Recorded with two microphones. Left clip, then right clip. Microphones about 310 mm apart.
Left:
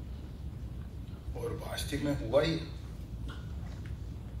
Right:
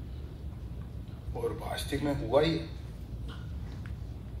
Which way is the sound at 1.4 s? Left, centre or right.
Right.